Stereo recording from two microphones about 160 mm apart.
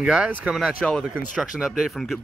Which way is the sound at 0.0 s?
5° right (ahead or behind).